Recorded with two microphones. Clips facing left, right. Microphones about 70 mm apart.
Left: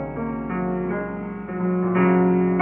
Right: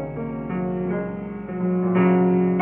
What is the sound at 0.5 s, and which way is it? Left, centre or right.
Music, left.